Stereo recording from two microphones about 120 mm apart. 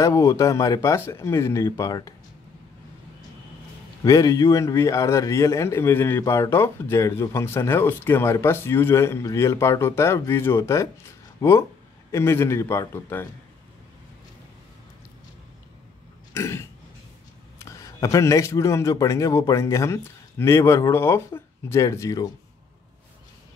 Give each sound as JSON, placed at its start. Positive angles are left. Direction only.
{"t": 0.0, "sound": "speech", "side_deg": 25}
{"t": 4.0, "sound": "speech", "side_deg": 30}
{"t": 16.3, "sound": "speech", "side_deg": 25}